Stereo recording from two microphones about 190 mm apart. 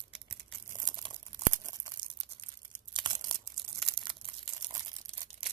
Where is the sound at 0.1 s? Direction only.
20° right (ahead or behind).